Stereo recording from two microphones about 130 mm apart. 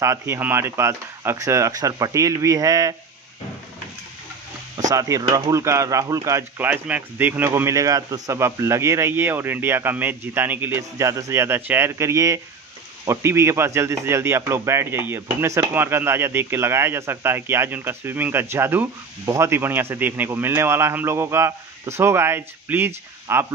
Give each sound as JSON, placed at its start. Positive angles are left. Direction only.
{"t": 0.0, "sound": "speech", "side_deg": -20}
{"t": 4.7, "sound": "speech", "side_deg": -25}
{"t": 6.7, "sound": "speech", "side_deg": -15}